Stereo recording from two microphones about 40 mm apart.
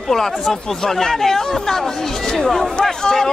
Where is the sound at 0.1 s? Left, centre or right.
Centre.